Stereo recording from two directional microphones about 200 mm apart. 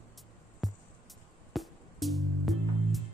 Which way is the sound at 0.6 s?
Centre (ahead or behind).